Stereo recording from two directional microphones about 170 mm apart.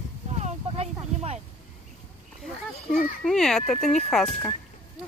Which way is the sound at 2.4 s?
Centre (ahead or behind).